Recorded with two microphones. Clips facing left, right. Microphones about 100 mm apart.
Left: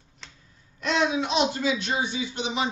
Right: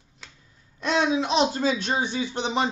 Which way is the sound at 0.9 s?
30° right (ahead or behind).